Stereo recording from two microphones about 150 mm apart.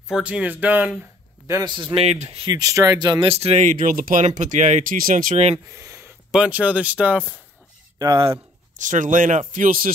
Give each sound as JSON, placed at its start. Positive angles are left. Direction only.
{"t": 0.1, "sound": "speech", "side_deg": -10}
{"t": 1.5, "sound": "speech", "side_deg": -30}
{"t": 2.0, "sound": "speech", "side_deg": -45}
{"t": 2.4, "sound": "speech", "side_deg": -25}
{"t": 3.3, "sound": "speech", "side_deg": -40}
{"t": 5.7, "sound": "a sound", "side_deg": -20}
{"t": 6.3, "sound": "speech", "side_deg": -10}
{"t": 8.0, "sound": "speech", "side_deg": -25}
{"t": 8.7, "sound": "speech", "side_deg": -60}